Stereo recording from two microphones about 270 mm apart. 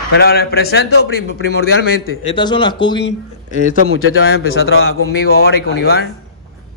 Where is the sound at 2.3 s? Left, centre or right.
Centre.